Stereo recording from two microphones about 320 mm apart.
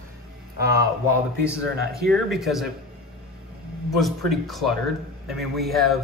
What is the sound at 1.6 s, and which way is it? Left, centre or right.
Speech, right.